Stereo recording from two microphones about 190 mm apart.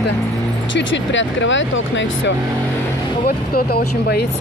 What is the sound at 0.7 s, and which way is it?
Speech, 75° left (ahead or behind).